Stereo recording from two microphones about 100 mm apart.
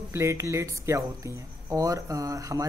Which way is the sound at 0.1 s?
30° right (ahead or behind).